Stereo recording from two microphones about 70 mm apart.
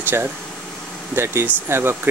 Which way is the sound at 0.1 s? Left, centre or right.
Right.